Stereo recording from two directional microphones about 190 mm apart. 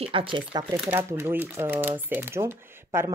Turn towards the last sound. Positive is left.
turn(degrees=-15)  # may be behind; listen again after turning